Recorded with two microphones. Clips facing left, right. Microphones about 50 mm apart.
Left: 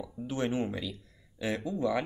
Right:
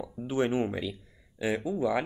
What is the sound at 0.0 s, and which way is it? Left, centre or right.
Speech, right.